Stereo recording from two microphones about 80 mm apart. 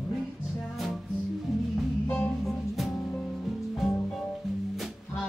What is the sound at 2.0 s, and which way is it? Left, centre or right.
Music, centre.